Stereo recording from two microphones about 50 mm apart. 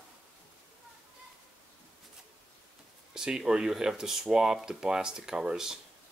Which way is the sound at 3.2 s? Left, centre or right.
Centre.